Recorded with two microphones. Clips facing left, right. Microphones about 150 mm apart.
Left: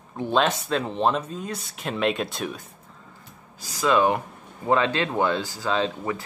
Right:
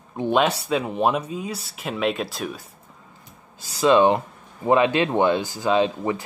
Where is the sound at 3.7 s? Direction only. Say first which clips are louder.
Right 4 dB; 25° right (ahead or behind).